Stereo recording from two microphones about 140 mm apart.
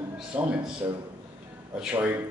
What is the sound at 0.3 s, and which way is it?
Speech, 5° right (ahead or behind).